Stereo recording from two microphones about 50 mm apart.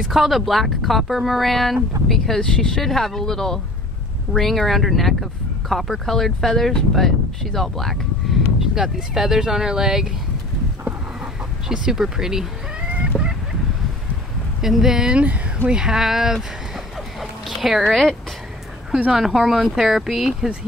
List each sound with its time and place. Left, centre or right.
0.0 s speech: centre
11.7 s speech: centre
13.1 s a sound: centre
14.6 s speech: centre
15.1 s speech: right; by 16.4 s centre
17.2 s a sound: centre
19.1 s speech: centre